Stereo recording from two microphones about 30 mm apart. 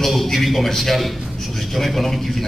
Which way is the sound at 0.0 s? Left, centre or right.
Centre.